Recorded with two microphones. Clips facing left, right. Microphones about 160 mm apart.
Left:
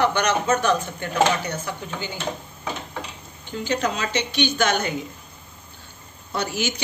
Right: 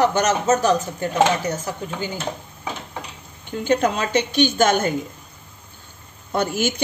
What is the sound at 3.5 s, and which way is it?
A woman's voice, 50° right (ahead or behind).